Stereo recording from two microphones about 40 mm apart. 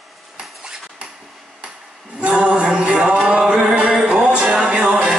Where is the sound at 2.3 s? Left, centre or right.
Right.